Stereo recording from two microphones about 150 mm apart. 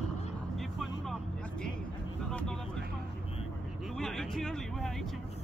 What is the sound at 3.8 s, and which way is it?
Speech, 5° left (ahead or behind).